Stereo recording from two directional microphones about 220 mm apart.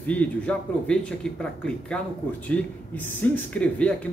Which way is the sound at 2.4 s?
5° left (ahead or behind).